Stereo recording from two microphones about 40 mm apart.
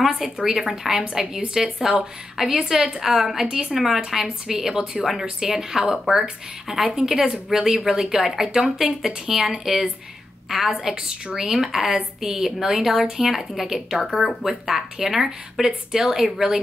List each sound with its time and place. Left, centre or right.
0.0 s a woman's voice: centre